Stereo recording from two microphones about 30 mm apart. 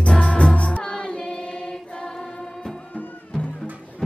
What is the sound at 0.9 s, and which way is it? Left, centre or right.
Choir, left.